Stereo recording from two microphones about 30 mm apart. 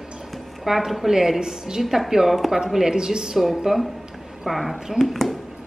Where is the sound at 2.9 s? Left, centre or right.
Right.